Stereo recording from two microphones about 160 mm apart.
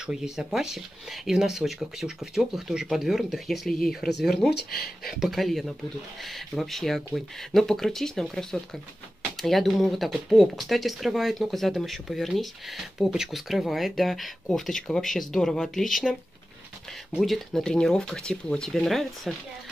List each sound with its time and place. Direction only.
0.0 s speech: 5° right (ahead or behind)
4.6 s speech: 75° left (ahead or behind)
5.0 s speech: centre (ahead or behind)